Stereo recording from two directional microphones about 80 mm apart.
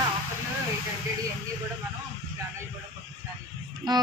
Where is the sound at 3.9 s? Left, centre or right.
Right.